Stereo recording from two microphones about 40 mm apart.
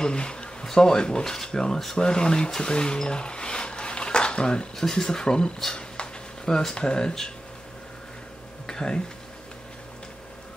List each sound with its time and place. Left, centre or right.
0.0 s a sound: left
0.7 s speech: centre
4.7 s speech: centre
5.8 s a sound: left
6.7 s speech: centre
8.6 s speech: centre